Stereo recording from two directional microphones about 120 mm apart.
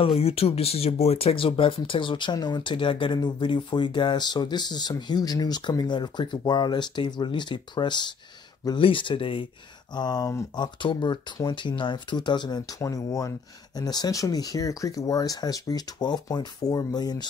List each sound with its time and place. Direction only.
0.0 s speech: 50° left (ahead or behind)
9.9 s speech: 35° left (ahead or behind)